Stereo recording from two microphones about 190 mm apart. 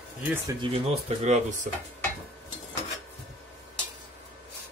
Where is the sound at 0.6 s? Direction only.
35° right (ahead or behind).